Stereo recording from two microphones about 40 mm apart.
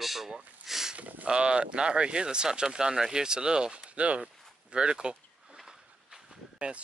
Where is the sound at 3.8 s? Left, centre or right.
Right.